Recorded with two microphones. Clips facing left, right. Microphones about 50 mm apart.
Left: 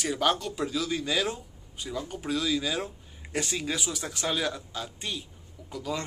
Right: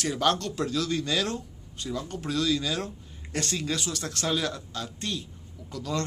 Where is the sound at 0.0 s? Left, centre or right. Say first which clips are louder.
Right 1 dB; centre.